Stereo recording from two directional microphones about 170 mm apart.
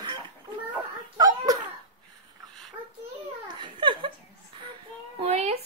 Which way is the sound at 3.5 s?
30° right (ahead or behind).